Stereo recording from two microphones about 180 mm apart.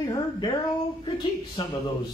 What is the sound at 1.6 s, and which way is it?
Speech, 30° left (ahead or behind).